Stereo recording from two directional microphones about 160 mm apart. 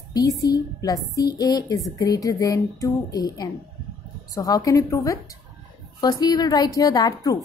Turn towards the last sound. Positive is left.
turn(degrees=25)  # may be behind; listen again after turning